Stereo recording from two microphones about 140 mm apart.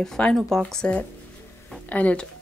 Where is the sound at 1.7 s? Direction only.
10° left (ahead or behind).